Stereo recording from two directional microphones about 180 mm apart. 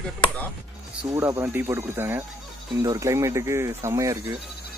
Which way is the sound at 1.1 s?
15° right (ahead or behind).